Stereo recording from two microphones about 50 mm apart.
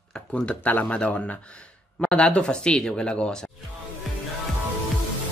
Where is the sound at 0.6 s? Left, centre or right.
Left; by 3.5 s centre.